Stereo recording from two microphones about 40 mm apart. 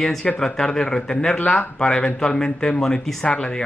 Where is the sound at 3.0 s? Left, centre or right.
Centre.